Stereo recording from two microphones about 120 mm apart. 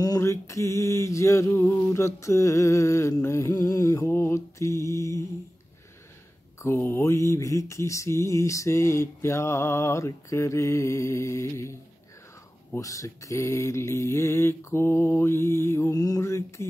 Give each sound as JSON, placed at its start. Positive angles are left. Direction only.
{"t": 0.0, "sound": "mantra", "side_deg": 30}
{"t": 6.6, "sound": "mantra", "side_deg": 20}
{"t": 12.7, "sound": "mantra", "side_deg": 30}